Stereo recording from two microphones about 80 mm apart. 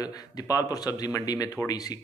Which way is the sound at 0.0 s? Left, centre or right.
Left.